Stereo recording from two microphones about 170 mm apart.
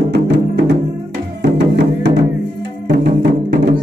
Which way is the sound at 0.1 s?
80° right.